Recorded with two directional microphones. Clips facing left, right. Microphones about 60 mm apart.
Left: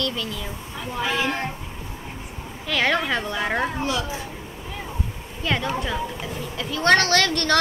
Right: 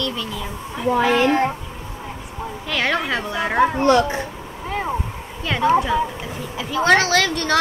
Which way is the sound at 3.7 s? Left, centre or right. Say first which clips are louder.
Right 10 dB; right.